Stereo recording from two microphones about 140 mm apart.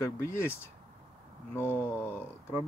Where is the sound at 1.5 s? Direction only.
15° left (ahead or behind).